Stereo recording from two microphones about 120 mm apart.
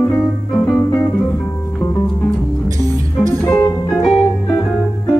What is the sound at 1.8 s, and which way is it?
Music, 20° left (ahead or behind).